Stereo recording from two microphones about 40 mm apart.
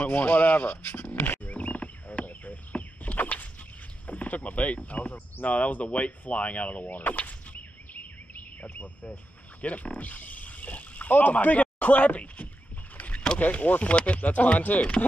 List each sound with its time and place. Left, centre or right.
0.0 s speech: left
1.5 s a sound: left
4.1 s speech: left
12.9 s vehicle: left
13.4 s speech: left